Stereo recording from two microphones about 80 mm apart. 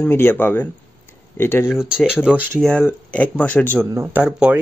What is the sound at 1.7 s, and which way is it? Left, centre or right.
Speech, centre.